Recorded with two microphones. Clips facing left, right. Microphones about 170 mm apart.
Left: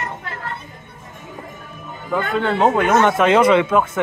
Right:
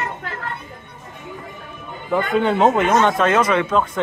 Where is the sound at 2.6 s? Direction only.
5° left (ahead or behind).